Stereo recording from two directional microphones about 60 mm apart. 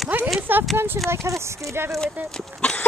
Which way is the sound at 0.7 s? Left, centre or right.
Right.